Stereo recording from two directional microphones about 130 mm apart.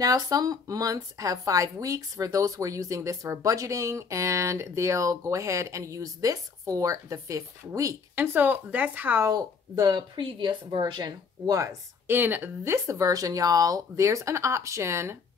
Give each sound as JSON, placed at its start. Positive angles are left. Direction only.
{"t": 0.0, "sound": "speech", "side_deg": -30}
{"t": 9.3, "sound": "speech", "side_deg": -30}